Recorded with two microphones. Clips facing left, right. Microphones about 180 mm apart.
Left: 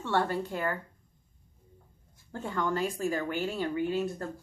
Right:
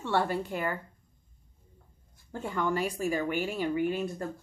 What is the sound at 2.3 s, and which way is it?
A woman's voice, 10° right (ahead or behind).